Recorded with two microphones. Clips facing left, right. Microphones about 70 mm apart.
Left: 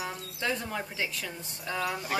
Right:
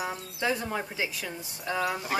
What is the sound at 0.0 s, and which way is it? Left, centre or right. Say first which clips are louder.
Speech: right 3 dB; centre.